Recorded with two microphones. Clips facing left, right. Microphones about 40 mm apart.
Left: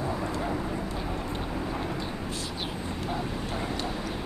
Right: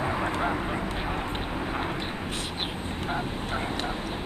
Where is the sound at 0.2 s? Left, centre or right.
Right.